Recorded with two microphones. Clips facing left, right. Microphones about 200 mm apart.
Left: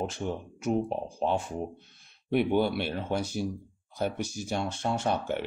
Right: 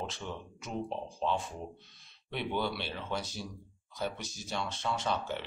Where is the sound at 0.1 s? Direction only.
50° left (ahead or behind).